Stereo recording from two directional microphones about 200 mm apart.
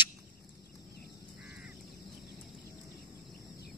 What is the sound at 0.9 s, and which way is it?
Crow, 50° left (ahead or behind).